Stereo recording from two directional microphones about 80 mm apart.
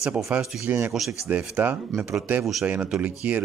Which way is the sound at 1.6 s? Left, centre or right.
Right.